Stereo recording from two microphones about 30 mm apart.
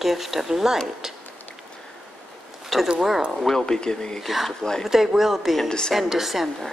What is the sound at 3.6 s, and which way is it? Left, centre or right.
Speech, left.